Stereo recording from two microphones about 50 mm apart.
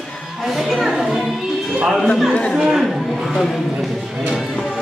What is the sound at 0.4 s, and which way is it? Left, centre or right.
Music, centre.